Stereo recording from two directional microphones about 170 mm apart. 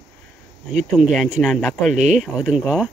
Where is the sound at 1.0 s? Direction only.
Centre (ahead or behind).